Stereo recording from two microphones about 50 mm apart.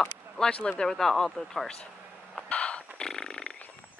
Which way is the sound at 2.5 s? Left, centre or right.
Left.